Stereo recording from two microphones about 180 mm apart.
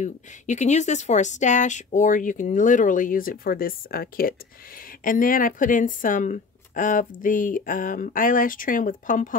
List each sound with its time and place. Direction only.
0.0 s speech: 40° left (ahead or behind)